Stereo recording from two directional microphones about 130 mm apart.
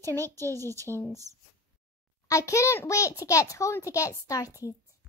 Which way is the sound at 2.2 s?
25° left (ahead or behind).